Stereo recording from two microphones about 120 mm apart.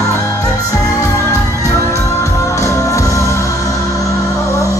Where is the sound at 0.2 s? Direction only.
30° left (ahead or behind).